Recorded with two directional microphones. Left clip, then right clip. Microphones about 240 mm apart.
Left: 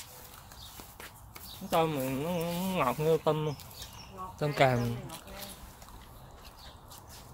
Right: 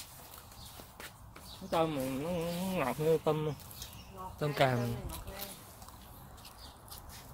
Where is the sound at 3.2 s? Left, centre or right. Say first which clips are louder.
Left 3 dB; centre.